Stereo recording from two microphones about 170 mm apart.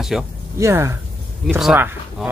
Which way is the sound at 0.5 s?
15° right (ahead or behind).